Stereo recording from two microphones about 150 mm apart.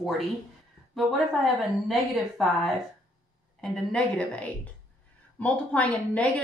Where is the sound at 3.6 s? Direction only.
5° left (ahead or behind).